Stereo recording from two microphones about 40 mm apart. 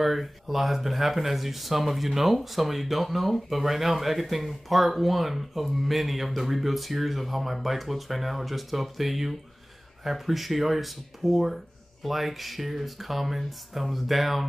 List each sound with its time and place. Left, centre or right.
0.0 s speech: centre